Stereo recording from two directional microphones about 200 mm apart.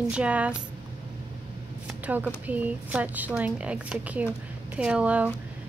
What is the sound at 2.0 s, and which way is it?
Speech, 5° right (ahead or behind).